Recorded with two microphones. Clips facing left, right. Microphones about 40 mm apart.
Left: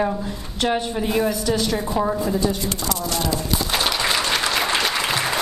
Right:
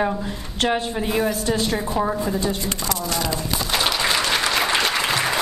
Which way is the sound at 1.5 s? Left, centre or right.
Right.